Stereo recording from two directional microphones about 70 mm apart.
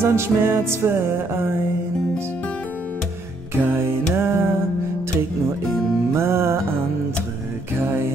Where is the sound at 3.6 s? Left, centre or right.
Right.